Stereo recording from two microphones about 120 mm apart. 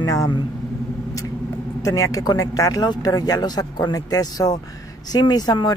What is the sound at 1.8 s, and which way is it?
A man's voice, 30° left (ahead or behind).